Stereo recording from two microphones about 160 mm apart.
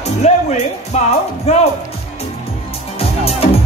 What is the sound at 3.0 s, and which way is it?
Music, 40° left (ahead or behind).